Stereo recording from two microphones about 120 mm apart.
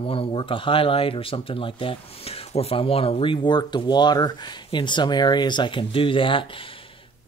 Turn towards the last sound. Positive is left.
turn(degrees=45)  # may be behind; listen again after turning